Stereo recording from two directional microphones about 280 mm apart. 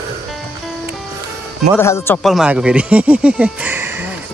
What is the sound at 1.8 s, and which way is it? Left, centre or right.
Speech, centre.